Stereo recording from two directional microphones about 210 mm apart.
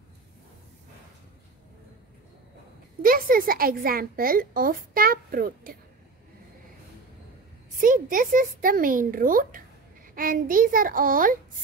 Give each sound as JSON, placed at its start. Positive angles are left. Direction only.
{"t": 3.0, "sound": "a woman's voice", "side_deg": -45}
{"t": 7.8, "sound": "speech", "side_deg": -40}